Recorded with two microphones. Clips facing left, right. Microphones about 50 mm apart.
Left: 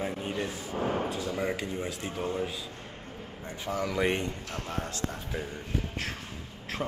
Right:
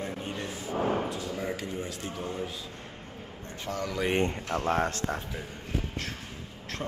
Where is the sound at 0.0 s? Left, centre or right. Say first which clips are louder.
Left 3 dB; centre.